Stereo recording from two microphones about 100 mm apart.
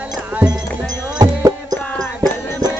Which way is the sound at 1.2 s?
40° right (ahead or behind).